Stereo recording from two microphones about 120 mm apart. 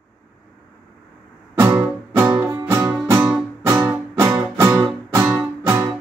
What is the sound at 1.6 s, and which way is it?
Music, 20° right (ahead or behind).